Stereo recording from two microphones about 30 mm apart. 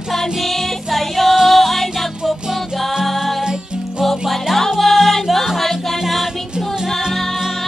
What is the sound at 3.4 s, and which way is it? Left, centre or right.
Music, centre.